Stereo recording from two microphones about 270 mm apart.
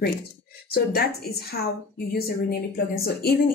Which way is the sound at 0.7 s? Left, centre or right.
Left.